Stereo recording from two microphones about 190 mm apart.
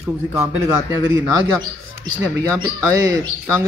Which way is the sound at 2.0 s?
20° right (ahead or behind).